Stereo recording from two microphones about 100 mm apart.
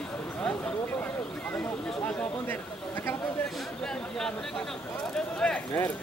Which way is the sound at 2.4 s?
20° left (ahead or behind).